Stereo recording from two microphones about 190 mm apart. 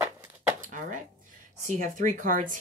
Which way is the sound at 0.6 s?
45° right (ahead or behind).